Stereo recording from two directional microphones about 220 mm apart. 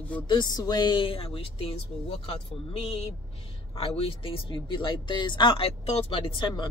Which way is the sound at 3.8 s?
25° left (ahead or behind).